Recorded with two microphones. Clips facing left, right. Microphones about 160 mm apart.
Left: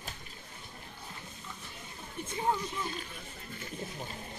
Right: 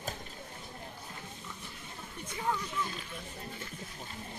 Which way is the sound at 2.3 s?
30° left (ahead or behind).